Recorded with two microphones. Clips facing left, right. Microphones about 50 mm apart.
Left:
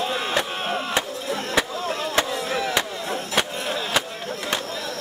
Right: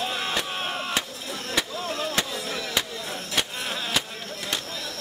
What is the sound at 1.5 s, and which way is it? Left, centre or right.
Music, centre.